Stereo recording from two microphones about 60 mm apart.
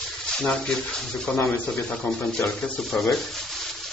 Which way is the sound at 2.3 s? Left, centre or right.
Centre.